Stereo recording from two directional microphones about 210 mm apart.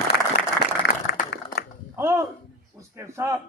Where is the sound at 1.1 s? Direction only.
50° left (ahead or behind).